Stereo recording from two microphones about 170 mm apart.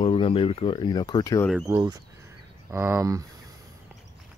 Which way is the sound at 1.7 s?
20° right (ahead or behind).